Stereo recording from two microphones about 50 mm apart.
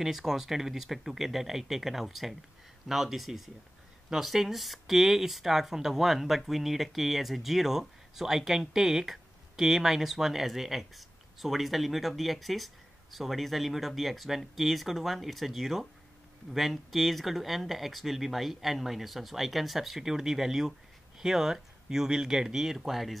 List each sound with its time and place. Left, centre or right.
0.0 s speech: centre